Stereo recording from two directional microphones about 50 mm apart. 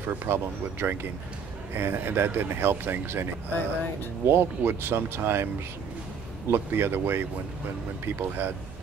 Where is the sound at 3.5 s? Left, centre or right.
Left.